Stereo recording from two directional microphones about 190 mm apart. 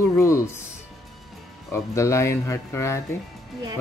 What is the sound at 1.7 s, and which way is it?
Speech, 15° left (ahead or behind).